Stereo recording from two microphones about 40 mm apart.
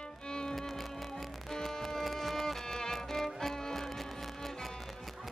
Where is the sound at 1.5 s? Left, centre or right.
Centre.